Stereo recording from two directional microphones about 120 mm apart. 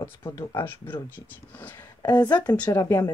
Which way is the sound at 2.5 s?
15° left (ahead or behind).